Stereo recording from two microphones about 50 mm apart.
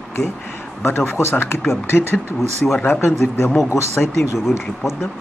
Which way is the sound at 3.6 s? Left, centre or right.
Left.